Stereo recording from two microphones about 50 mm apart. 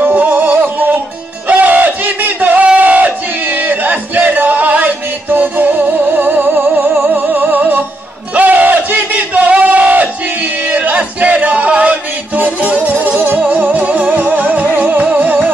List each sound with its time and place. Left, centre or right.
0.0 s music: right
1.5 s battle cry: right
6.7 s music: right
8.4 s crowd: right
10.7 s music: right